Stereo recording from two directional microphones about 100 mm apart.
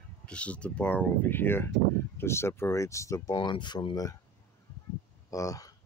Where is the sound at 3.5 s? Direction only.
55° left (ahead or behind).